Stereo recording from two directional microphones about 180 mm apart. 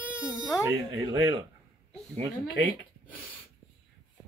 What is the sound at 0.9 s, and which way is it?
Speech, 25° right (ahead or behind).